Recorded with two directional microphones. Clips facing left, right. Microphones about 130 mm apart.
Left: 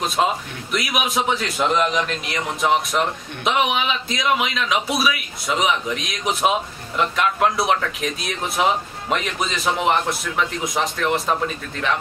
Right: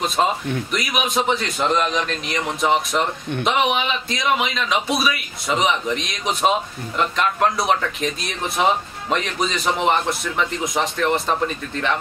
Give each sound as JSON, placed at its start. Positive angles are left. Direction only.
{"t": 0.0, "sound": "a man's voice", "side_deg": 0}